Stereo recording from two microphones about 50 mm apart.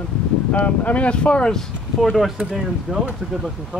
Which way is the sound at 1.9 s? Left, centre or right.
Centre.